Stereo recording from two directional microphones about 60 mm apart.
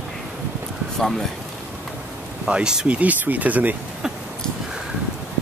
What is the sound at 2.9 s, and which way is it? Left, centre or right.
Speech, right.